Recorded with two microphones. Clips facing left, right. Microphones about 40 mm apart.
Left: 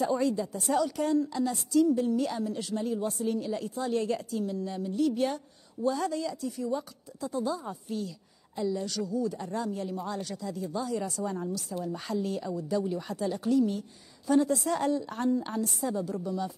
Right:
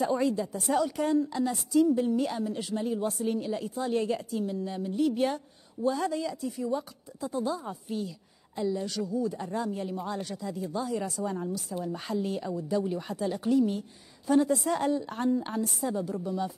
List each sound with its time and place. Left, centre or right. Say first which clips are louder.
0.0 s a woman's voice: even; centre